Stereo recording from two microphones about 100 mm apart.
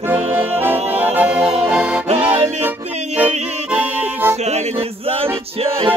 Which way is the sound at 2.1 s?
15° right (ahead or behind).